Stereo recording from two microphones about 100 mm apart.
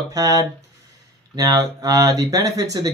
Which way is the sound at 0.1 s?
35° right (ahead or behind).